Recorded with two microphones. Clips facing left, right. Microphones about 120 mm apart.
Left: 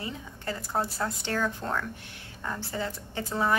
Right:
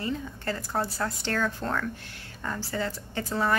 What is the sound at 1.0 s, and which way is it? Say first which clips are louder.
A woman's voice: right 1 dB; 15° left (ahead or behind).